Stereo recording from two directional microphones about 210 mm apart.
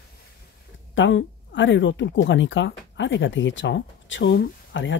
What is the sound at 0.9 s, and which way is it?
Speech, 60° left (ahead or behind).